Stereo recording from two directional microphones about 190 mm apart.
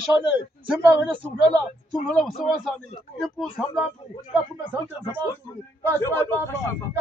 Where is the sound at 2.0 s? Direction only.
Centre (ahead or behind).